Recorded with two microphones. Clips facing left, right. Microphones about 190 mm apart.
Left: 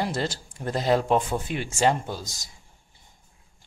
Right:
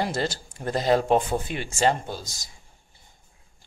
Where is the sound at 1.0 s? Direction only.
35° right (ahead or behind).